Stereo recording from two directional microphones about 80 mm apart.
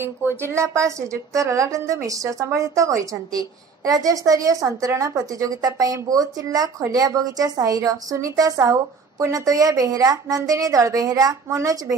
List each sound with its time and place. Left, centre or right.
0.0 s a woman's voice: right